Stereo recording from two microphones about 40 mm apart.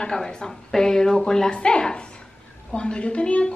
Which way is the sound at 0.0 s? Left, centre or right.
Centre.